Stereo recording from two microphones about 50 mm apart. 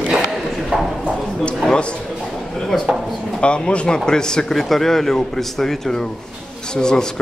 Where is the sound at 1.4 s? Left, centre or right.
Centre.